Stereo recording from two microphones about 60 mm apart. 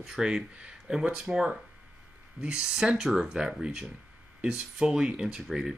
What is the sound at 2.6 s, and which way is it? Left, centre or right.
Speech, centre.